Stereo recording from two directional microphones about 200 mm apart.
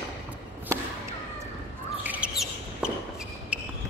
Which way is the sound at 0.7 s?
15° right (ahead or behind).